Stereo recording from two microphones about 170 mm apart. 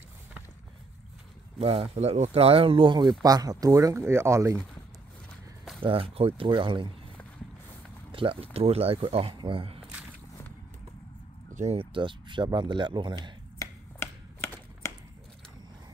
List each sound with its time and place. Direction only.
1.6 s speech: 35° right (ahead or behind); by 4.6 s 15° right (ahead or behind)
5.8 s speech: 30° right (ahead or behind)
8.1 s speech: 30° right (ahead or behind)
11.5 s speech: 35° right (ahead or behind)
13.6 s finger snapping: 15° left (ahead or behind)